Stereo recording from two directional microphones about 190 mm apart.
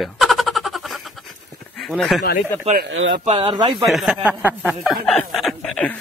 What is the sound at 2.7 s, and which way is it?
Speech, 75° right (ahead or behind).